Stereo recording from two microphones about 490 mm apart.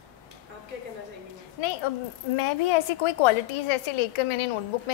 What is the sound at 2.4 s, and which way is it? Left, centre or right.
A woman's voice, left.